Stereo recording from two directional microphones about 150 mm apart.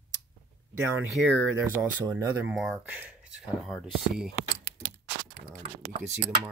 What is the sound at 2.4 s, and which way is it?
Speech, 5° right (ahead or behind).